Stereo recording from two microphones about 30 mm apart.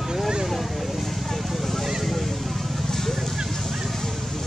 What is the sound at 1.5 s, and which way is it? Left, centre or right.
Cattle, centre.